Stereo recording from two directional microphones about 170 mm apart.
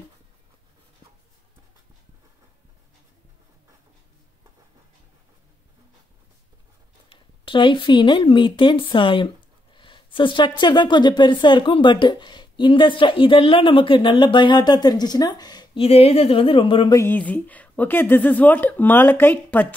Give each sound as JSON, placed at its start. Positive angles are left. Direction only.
{"t": 7.1, "sound": "a woman's voice", "side_deg": 30}
{"t": 16.9, "sound": "a woman's voice", "side_deg": 15}